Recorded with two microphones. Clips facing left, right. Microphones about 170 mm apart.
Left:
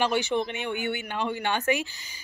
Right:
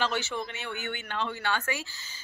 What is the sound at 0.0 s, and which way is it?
Speech, 15° left (ahead or behind).